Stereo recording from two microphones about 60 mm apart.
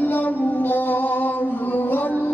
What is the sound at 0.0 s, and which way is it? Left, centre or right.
Music, left.